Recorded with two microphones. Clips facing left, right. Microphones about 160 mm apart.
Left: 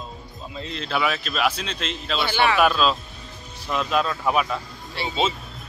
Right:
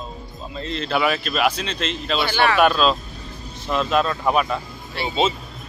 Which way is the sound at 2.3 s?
15° left (ahead or behind).